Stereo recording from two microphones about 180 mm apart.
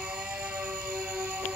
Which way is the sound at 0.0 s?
5° right (ahead or behind).